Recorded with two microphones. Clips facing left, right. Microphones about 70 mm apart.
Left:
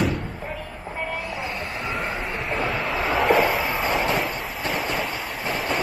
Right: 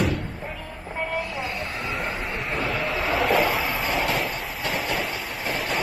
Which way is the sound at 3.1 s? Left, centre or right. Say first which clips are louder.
Left 2 dB; centre.